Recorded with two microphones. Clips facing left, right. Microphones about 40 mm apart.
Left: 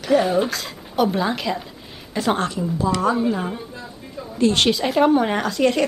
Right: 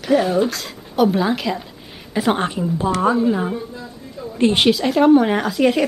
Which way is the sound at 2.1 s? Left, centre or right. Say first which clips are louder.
Right 2 dB; centre.